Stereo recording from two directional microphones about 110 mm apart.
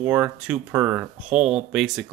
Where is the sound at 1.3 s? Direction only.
5° right (ahead or behind).